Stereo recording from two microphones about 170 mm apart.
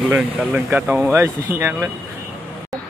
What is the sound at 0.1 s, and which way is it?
Speech, 10° right (ahead or behind).